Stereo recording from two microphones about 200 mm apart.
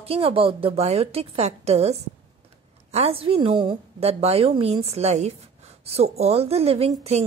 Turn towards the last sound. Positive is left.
turn(degrees=-30)  # may be behind; listen again after turning